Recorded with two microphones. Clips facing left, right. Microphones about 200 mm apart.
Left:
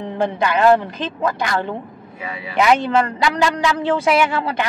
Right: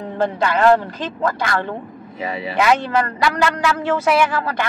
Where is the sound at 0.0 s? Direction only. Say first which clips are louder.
Even; 15° left (ahead or behind).